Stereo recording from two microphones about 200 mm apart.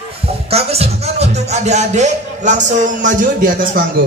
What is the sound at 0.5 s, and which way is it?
Speech, 30° right (ahead or behind).